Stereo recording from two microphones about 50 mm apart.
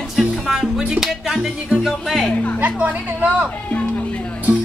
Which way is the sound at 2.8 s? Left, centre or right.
Right.